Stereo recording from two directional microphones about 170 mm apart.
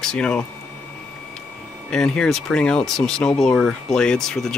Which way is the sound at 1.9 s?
5° left (ahead or behind).